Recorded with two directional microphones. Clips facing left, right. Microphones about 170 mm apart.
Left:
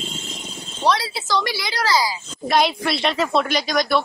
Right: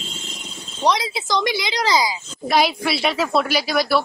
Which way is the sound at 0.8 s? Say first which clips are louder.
Right 1 dB; 15° right (ahead or behind).